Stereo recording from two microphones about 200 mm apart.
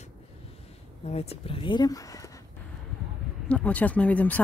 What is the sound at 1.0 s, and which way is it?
Speech, 30° left (ahead or behind).